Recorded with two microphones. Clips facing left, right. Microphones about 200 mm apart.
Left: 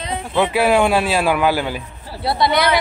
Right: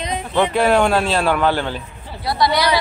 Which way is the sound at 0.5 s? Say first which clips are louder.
Left 1 dB; 5° left (ahead or behind).